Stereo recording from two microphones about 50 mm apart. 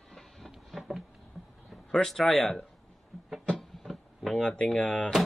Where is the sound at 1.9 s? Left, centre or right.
Centre.